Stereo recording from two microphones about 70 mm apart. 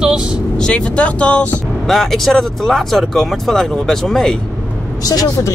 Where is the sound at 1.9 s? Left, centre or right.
Centre.